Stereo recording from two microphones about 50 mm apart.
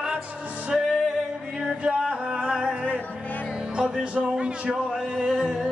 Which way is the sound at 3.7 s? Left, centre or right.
Right.